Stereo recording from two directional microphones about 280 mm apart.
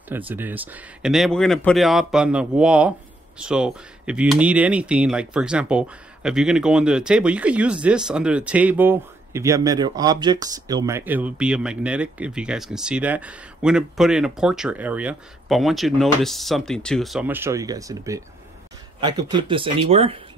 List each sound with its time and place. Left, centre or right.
0.3 s speech: centre